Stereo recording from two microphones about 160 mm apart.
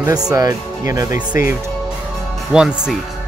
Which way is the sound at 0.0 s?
25° right (ahead or behind).